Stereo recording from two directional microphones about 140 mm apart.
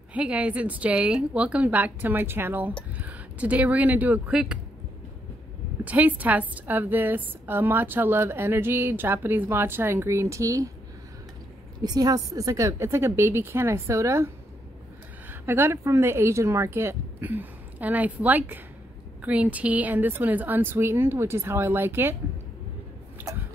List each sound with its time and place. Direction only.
0.1 s a woman's voice: 10° right (ahead or behind)
5.9 s a woman's voice: 10° right (ahead or behind)
11.8 s a woman's voice: 30° right (ahead or behind)
23.3 s a sound: 25° right (ahead or behind)